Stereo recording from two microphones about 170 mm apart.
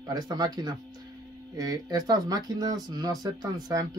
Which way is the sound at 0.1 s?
25° right (ahead or behind).